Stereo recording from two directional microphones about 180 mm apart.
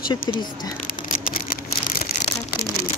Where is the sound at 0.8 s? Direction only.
50° left (ahead or behind).